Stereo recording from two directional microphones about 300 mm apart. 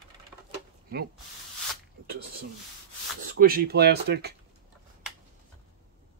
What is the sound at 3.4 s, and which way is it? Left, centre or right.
Speech, right.